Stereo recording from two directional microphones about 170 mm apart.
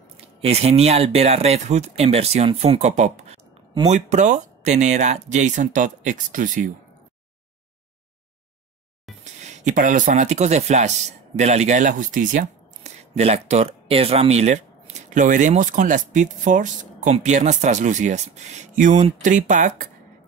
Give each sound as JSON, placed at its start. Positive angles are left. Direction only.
{"t": 0.2, "sound": "speech", "side_deg": -35}
{"t": 9.2, "sound": "speech", "side_deg": -45}